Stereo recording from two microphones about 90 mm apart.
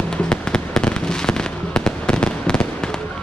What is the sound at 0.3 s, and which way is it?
Fireworks, 10° left (ahead or behind).